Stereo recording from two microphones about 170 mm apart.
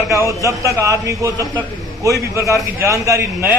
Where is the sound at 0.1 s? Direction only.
20° right (ahead or behind).